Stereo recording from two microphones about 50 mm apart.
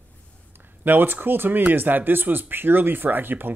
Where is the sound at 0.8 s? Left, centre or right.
Right.